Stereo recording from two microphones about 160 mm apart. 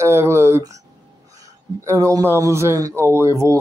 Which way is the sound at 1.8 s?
20° right (ahead or behind).